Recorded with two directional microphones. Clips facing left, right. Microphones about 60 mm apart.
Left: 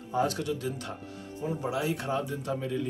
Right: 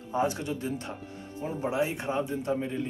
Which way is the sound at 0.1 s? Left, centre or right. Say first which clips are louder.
Even; right.